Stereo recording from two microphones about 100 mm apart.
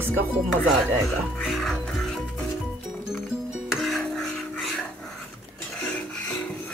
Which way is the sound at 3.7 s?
Centre (ahead or behind).